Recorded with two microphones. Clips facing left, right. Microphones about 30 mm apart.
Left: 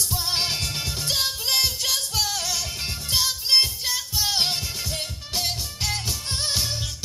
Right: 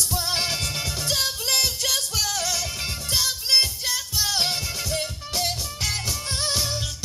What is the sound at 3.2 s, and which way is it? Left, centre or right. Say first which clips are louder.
Music: left 1 dB; centre.